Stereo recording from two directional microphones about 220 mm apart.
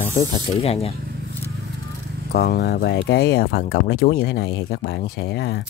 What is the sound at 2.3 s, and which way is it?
Speech, 45° left (ahead or behind).